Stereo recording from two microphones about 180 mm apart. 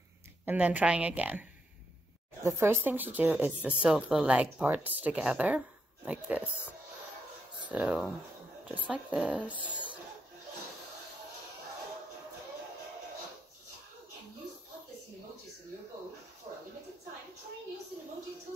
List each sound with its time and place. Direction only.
0.5 s speech: 10° right (ahead or behind)
2.4 s speech: 15° right (ahead or behind)
7.7 s speech: 5° right (ahead or behind)
16.5 s a sound: 25° right (ahead or behind)